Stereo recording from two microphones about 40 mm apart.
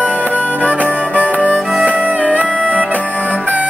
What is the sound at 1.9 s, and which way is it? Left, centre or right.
Music, right.